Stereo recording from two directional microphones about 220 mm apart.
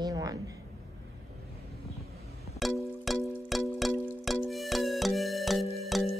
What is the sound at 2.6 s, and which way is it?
Music, centre (ahead or behind).